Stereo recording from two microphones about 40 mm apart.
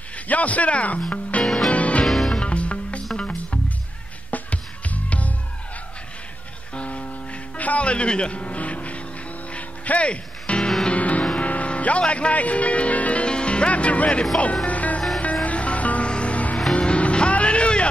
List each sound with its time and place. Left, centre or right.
0.3 s speech: left
1.4 s music: centre
1.7 s music: left
2.0 s music: centre
2.3 s music: left
6.7 s music: left
11.3 s speech: left
14.4 s music: left